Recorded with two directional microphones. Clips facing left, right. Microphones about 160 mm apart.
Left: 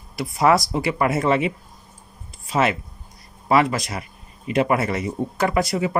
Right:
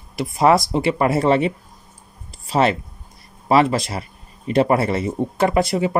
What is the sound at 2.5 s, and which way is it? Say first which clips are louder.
Speech: right 3 dB; 30° right (ahead or behind).